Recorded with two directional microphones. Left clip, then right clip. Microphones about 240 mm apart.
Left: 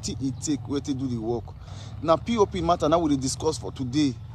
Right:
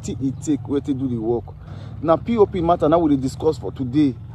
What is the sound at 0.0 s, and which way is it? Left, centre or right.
Speech, centre.